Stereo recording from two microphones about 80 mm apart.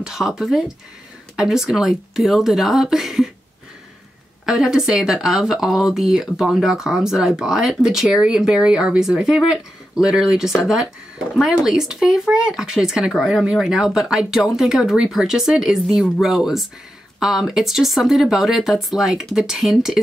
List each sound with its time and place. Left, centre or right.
0.0 s speech: centre
4.5 s speech: centre